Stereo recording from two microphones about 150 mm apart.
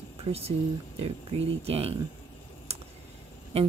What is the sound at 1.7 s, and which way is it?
Speech, 40° right (ahead or behind).